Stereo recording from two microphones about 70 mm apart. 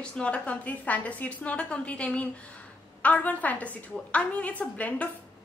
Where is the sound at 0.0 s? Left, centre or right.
Centre.